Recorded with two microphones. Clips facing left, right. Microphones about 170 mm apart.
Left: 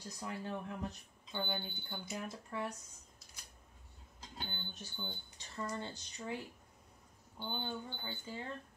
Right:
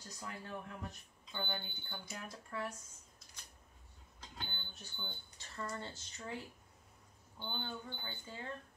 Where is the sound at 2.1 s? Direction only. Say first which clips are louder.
Left 5 dB; 20° left (ahead or behind).